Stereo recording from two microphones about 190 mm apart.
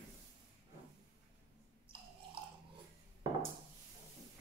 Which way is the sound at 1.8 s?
30° right (ahead or behind).